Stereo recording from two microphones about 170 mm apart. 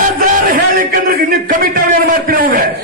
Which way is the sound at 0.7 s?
55° right (ahead or behind).